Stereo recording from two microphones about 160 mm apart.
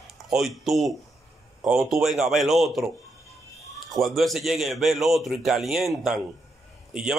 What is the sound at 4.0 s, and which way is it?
A man's voice, centre (ahead or behind).